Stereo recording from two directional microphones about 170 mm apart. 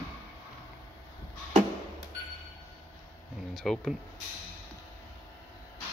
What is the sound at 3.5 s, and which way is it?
Speech, centre (ahead or behind).